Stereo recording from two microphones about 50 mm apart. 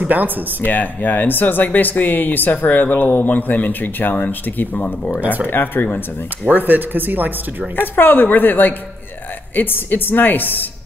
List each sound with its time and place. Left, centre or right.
0.0 s speech: right
0.6 s speech: left
5.5 s speech: left
6.5 s speech: right
7.7 s speech: left